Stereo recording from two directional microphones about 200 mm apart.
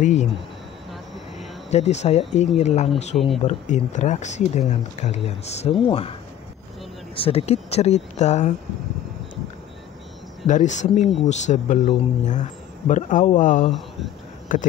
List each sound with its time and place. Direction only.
0.0 s speech: 35° left (ahead or behind)
1.7 s speech: 35° left (ahead or behind)
7.2 s speech: 30° left (ahead or behind)
10.4 s speech: 35° left (ahead or behind)
13.7 s speech: centre (ahead or behind)
14.5 s speech: 40° left (ahead or behind)